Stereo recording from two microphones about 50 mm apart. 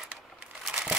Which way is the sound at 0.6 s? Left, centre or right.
Centre.